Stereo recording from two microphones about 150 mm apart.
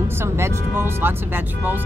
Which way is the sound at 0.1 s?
15° right (ahead or behind).